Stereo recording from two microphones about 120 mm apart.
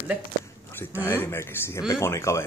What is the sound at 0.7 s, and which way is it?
Speech, 20° left (ahead or behind).